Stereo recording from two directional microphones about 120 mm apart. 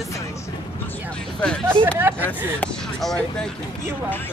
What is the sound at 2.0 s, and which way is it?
Speech, 20° right (ahead or behind).